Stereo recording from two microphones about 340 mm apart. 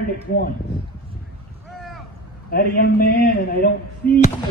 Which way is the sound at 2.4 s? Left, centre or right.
Left.